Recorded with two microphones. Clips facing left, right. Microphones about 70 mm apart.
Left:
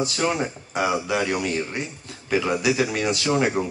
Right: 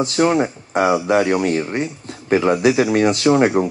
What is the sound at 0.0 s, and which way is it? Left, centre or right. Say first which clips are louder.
Speech: right 7 dB; right.